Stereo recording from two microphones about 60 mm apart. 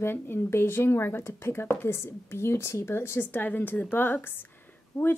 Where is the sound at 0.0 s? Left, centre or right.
Left.